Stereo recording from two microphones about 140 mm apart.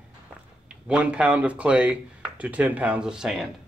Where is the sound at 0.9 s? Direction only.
10° right (ahead or behind).